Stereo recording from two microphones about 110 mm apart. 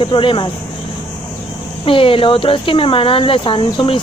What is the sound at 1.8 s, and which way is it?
Speech, 55° left (ahead or behind).